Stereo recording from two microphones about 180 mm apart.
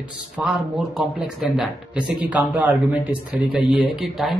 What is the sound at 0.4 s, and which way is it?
Speech, centre (ahead or behind).